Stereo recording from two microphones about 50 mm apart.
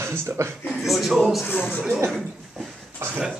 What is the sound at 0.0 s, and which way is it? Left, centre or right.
Speech, right.